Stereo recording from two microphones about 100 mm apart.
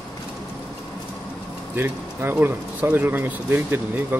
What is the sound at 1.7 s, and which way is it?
Speech, 20° right (ahead or behind).